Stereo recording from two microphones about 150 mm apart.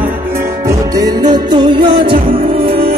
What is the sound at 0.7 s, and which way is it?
Music, 25° right (ahead or behind).